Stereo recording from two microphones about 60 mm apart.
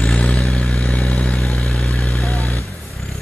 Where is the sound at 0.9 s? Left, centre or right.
Centre.